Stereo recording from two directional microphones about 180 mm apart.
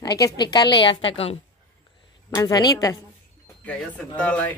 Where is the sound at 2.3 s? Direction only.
20° left (ahead or behind).